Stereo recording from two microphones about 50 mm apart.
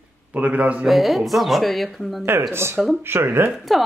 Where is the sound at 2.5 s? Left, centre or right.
Right.